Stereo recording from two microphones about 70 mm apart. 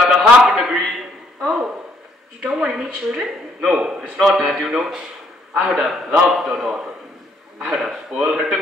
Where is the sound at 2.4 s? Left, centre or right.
Centre.